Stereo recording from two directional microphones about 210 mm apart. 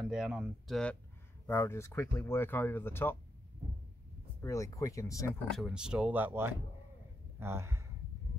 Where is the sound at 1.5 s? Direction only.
10° left (ahead or behind).